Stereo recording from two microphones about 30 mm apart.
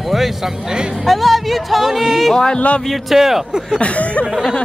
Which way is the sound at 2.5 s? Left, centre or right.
Left.